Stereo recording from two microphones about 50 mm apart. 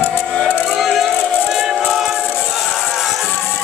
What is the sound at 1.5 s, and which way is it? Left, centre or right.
Music, centre.